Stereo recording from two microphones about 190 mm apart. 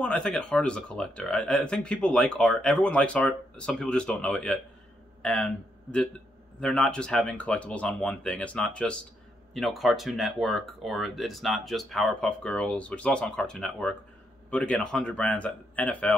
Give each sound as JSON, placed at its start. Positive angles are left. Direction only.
{"t": 0.0, "sound": "a man's voice", "side_deg": 5}